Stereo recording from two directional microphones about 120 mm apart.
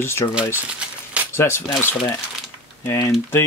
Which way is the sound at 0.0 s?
20° left (ahead or behind).